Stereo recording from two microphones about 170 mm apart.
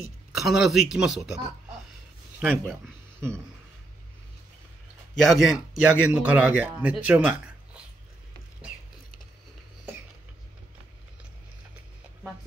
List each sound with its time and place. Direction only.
0.4 s speech: centre (ahead or behind)
2.4 s a man's voice: 10° right (ahead or behind)
5.2 s a man's voice: centre (ahead or behind)